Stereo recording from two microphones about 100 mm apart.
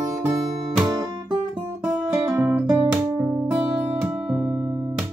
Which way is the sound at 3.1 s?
25° right (ahead or behind).